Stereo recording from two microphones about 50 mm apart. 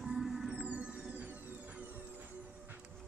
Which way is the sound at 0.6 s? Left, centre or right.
Right.